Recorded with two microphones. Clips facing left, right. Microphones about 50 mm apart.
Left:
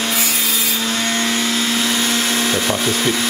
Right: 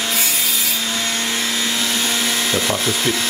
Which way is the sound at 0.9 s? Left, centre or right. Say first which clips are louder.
Left 3 dB; left.